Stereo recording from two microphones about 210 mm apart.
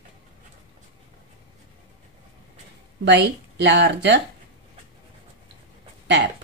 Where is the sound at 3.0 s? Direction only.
55° right (ahead or behind).